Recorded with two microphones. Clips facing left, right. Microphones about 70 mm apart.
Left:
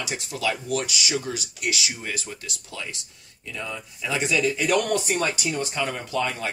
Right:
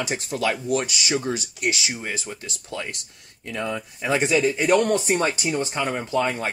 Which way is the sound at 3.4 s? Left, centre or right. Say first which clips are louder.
Right 6 dB; right.